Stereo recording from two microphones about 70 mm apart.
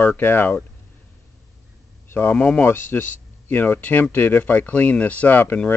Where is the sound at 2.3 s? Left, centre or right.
Centre.